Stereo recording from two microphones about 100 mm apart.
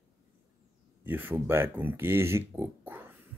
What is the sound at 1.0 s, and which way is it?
Speech, 20° right (ahead or behind).